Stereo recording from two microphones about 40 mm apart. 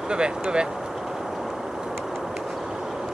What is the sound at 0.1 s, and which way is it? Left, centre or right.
Speech, right.